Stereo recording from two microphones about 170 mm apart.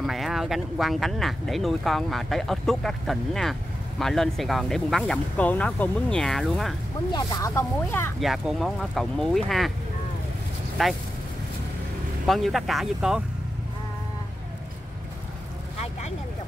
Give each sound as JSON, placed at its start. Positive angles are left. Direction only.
{"t": 0.0, "sound": "speech", "side_deg": 0}
{"t": 7.1, "sound": "speech", "side_deg": 20}
{"t": 8.2, "sound": "speech", "side_deg": 0}
{"t": 10.8, "sound": "speech", "side_deg": 0}
{"t": 12.3, "sound": "speech", "side_deg": 0}